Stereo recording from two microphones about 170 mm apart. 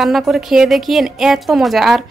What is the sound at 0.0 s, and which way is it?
A woman's voice, centre (ahead or behind).